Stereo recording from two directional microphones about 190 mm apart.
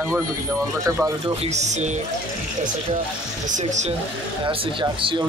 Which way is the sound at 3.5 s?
40° right (ahead or behind).